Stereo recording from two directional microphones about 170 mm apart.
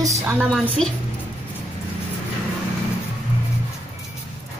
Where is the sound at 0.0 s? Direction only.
15° right (ahead or behind).